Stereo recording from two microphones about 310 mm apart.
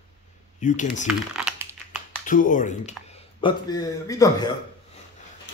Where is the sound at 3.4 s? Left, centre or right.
Centre.